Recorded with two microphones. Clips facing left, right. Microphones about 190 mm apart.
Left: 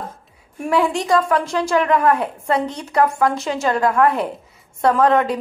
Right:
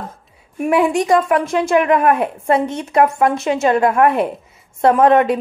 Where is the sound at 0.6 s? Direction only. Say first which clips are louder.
Right 4 dB; 20° right (ahead or behind).